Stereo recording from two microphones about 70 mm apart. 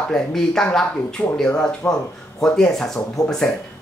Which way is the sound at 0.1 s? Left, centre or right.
Centre.